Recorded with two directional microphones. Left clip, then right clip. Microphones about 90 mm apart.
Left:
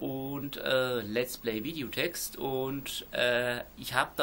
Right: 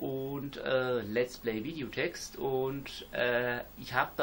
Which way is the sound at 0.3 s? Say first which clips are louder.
Left 3 dB; 25° left (ahead or behind).